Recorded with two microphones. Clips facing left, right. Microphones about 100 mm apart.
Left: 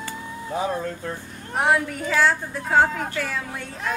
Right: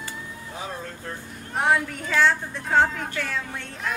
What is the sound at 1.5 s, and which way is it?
A woman's voice, 5° left (ahead or behind).